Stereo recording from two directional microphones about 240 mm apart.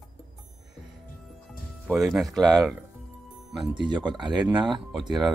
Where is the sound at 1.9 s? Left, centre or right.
Centre.